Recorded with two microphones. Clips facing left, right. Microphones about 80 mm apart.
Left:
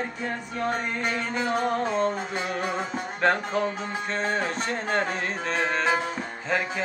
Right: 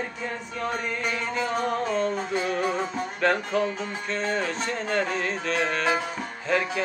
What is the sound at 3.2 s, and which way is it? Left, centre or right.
Music, left.